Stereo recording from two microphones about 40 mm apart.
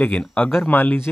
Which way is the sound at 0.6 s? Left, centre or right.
Left.